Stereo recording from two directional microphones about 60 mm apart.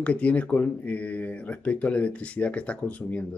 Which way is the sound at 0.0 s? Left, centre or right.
Left.